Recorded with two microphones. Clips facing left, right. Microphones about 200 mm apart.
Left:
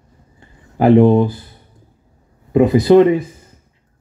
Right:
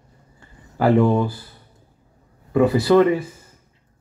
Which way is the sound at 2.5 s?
20° left (ahead or behind).